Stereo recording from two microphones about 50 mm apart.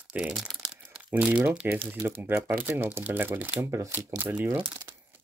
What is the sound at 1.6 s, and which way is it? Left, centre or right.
Speech, right.